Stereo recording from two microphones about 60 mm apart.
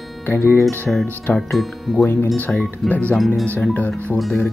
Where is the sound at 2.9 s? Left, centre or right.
Left.